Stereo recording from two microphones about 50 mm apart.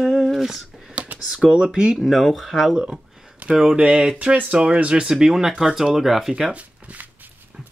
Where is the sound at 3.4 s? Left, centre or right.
Right.